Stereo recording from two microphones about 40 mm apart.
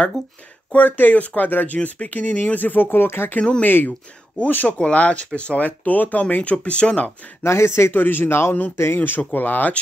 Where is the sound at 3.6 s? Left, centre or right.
Left.